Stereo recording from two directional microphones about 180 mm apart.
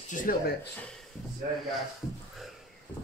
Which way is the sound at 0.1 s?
50° left (ahead or behind).